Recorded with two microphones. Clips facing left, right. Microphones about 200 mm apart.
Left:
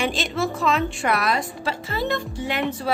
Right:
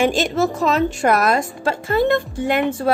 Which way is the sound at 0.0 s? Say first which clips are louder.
Right 7 dB; 45° right (ahead or behind).